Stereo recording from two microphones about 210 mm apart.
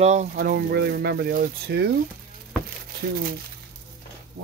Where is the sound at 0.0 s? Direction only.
35° right (ahead or behind).